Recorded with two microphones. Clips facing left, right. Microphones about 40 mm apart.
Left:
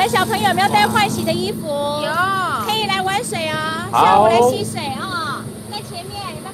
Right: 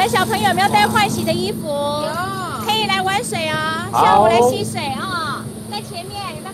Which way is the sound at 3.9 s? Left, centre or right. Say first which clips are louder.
Left 1 dB; left.